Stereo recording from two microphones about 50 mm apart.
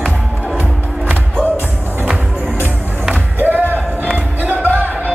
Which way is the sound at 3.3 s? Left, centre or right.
Right.